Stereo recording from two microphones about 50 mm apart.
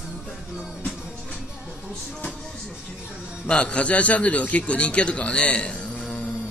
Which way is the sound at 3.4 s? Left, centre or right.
Centre.